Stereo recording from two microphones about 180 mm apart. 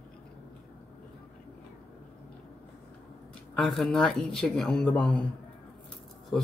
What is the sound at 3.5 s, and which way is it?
Speech, centre (ahead or behind).